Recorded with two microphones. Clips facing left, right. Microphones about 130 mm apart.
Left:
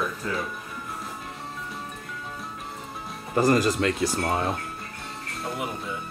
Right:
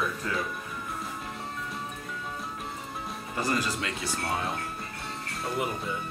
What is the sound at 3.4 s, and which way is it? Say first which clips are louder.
Speech: left 9 dB; 40° left (ahead or behind).